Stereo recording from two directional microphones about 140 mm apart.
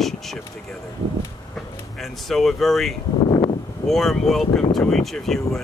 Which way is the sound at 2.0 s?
Centre (ahead or behind).